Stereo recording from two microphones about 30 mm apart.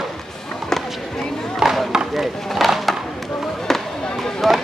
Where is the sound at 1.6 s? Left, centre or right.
Right.